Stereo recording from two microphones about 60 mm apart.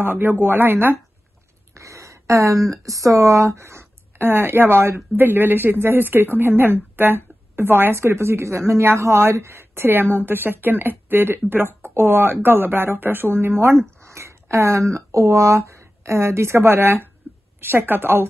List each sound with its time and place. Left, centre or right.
0.0 s speech: right
1.8 s speech: right